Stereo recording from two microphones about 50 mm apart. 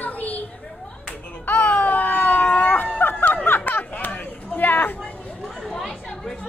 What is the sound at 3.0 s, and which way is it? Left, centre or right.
Music, left.